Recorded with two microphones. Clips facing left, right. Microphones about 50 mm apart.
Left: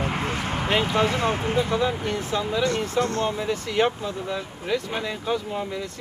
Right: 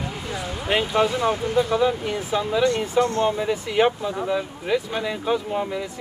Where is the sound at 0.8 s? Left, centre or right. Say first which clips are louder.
Right 2 dB; left.